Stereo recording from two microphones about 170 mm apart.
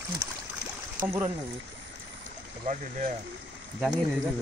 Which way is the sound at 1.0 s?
15° right (ahead or behind).